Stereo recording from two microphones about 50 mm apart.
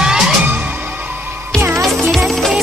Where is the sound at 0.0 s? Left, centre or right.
Centre.